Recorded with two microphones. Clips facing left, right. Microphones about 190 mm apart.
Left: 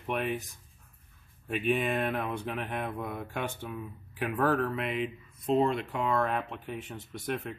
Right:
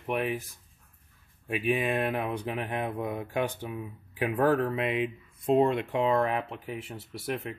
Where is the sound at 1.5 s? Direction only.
5° right (ahead or behind).